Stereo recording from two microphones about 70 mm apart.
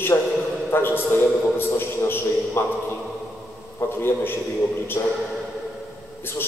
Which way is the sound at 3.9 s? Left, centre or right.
Left.